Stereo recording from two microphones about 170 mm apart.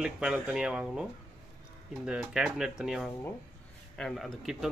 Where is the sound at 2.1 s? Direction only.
5° right (ahead or behind).